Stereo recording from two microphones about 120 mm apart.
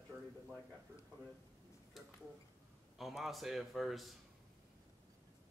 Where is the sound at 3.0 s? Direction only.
Centre (ahead or behind).